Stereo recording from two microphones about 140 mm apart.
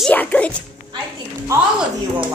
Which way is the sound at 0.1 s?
10° left (ahead or behind).